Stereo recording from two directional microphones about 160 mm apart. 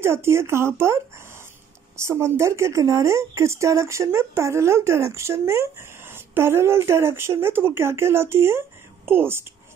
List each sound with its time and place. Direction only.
0.0 s speech: 15° right (ahead or behind)